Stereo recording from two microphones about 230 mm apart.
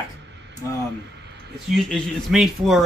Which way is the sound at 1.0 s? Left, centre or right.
Right.